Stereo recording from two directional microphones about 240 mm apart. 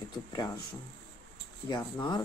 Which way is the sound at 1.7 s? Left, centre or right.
Centre.